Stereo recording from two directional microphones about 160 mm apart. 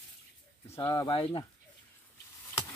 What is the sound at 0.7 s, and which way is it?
Speech, 25° left (ahead or behind).